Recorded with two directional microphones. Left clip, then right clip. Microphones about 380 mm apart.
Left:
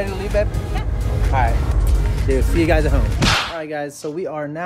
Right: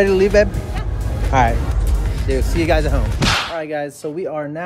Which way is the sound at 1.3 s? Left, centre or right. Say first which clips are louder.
Right 5 dB; right.